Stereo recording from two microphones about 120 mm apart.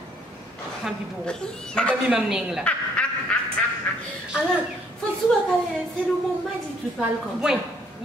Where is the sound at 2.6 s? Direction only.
10° left (ahead or behind).